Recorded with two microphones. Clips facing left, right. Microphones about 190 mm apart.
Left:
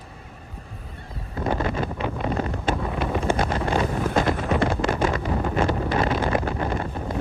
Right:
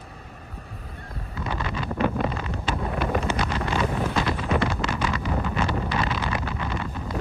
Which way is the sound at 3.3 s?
45° left (ahead or behind).